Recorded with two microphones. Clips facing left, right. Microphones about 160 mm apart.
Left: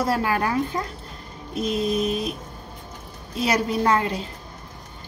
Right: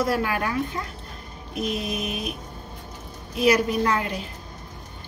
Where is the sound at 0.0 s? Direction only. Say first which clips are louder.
Left 1 dB; 35° left (ahead or behind).